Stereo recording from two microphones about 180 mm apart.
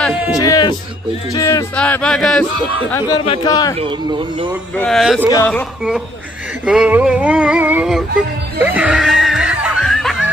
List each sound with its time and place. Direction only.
0.4 s speech: 20° left (ahead or behind)
1.8 s speech: 5° left (ahead or behind)
2.6 s speech: 30° right (ahead or behind)
3.1 s speech: 20° left (ahead or behind)
4.7 s speech: centre (ahead or behind)
6.6 s a sound: 5° right (ahead or behind)
8.5 s laughter: 10° right (ahead or behind)